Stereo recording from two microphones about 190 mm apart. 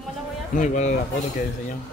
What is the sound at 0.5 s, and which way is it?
Speech, 40° left (ahead or behind).